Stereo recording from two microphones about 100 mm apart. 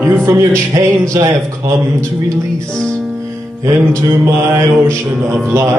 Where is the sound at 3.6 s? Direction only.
25° right (ahead or behind).